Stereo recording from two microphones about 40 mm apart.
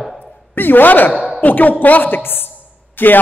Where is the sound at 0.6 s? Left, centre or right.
Left.